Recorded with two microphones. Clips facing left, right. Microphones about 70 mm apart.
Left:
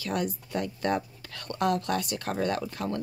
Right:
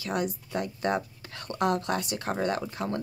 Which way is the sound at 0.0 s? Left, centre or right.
Centre.